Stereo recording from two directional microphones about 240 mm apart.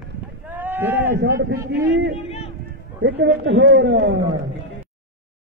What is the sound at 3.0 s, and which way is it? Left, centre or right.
A man's voice, right.